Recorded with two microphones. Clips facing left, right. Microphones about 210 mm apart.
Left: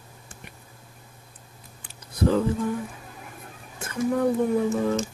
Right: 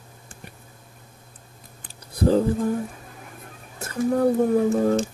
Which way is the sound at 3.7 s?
35° right (ahead or behind).